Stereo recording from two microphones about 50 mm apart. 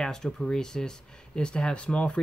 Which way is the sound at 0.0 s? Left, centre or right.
Centre.